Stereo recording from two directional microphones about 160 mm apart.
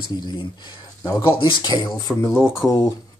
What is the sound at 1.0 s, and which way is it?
Speech, 20° left (ahead or behind).